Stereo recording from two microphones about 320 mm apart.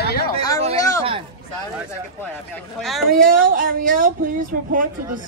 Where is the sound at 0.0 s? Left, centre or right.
Left.